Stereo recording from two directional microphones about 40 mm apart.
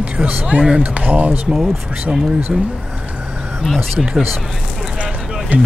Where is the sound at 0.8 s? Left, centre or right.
Right.